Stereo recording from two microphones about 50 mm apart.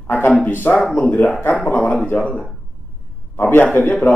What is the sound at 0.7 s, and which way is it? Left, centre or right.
Speech, left.